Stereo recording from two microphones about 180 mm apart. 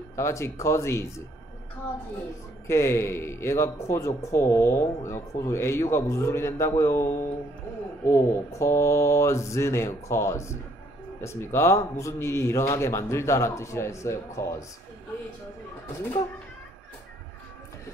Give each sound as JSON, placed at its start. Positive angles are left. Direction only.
{"t": 0.1, "sound": "a man's voice", "side_deg": 15}
{"t": 2.6, "sound": "a man's voice", "side_deg": 15}